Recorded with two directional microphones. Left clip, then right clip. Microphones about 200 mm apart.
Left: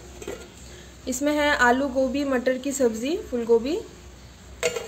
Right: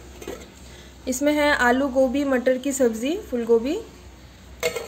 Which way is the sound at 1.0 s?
10° right (ahead or behind).